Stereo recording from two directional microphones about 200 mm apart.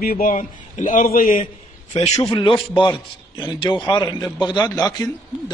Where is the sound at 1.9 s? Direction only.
30° left (ahead or behind).